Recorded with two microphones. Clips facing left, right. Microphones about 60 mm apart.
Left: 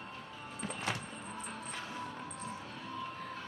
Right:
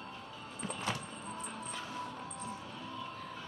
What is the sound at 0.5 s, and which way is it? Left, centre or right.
Vehicle, left.